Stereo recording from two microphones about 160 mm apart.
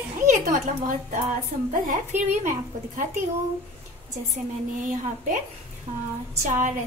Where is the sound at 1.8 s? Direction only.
50° right (ahead or behind).